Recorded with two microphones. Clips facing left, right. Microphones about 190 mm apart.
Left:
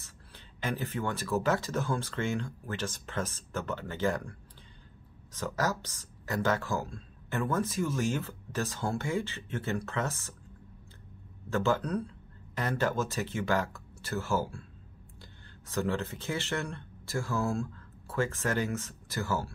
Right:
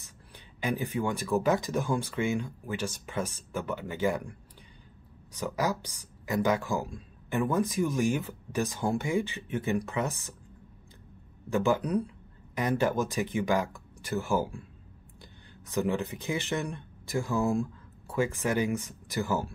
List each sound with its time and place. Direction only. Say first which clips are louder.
0.6 s speech: right 3 dB; 15° right (ahead or behind)
11.5 s speech: right 3 dB; 15° right (ahead or behind)